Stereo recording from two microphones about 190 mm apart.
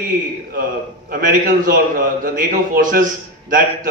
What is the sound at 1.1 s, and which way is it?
A man's voice, 45° right (ahead or behind).